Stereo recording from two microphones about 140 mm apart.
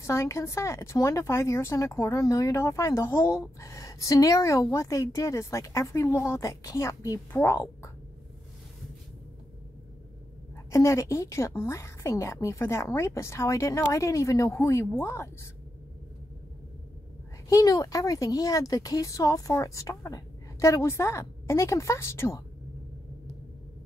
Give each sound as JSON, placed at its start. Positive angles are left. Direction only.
{"t": 0.0, "sound": "speech", "side_deg": 20}
{"t": 10.7, "sound": "a woman's voice", "side_deg": 20}
{"t": 17.5, "sound": "speech", "side_deg": 25}